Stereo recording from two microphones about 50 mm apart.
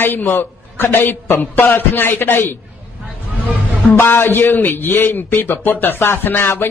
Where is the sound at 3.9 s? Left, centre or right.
Left.